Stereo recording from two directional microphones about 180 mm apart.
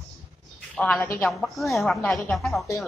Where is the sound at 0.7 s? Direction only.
5° left (ahead or behind).